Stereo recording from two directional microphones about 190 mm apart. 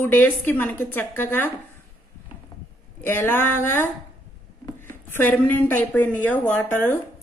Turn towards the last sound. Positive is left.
turn(degrees=10)  # may be behind; listen again after turning